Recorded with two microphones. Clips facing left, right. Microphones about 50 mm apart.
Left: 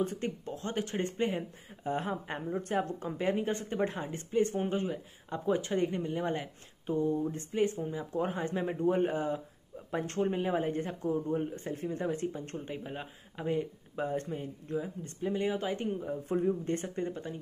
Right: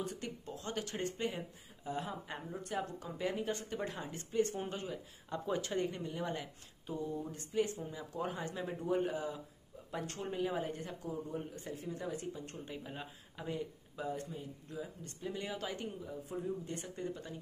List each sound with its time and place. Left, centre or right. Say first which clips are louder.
0.0 s a man's voice: left 8 dB; left
14.8 s a man's voice: left 6 dB; left